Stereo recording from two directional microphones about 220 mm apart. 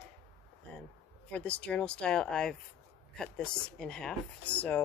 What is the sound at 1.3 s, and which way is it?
Speech, 5° left (ahead or behind).